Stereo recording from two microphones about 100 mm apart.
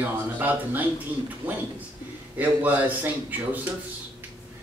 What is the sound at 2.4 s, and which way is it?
Speech, 15° right (ahead or behind).